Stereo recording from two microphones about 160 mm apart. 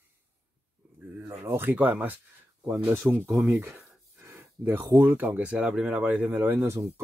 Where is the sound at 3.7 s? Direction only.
5° right (ahead or behind).